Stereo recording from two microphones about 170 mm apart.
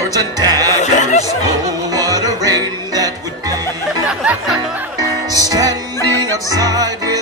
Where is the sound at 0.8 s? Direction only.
45° left (ahead or behind).